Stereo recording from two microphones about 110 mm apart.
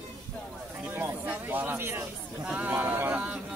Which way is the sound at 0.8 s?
15° right (ahead or behind).